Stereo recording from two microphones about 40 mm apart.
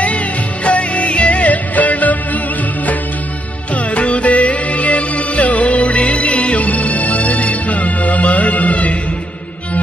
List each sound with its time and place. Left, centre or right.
0.7 s music: left
3.7 s music: left